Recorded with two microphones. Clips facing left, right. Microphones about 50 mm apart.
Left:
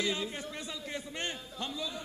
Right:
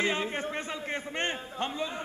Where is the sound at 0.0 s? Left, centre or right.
Right.